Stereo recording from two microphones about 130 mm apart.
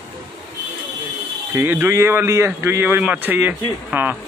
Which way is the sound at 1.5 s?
15° right (ahead or behind).